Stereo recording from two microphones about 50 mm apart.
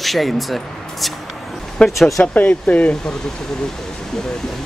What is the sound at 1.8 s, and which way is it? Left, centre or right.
Speech, left.